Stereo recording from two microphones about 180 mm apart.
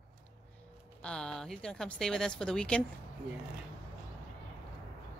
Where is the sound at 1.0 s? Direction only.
5° left (ahead or behind).